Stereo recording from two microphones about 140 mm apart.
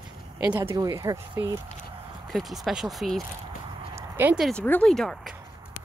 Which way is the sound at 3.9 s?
15° right (ahead or behind).